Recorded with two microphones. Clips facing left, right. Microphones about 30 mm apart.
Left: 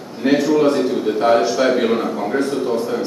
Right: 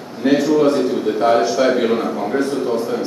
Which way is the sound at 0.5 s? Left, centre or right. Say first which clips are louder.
Right 1 dB; centre.